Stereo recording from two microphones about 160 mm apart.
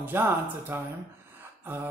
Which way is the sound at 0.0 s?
15° right (ahead or behind).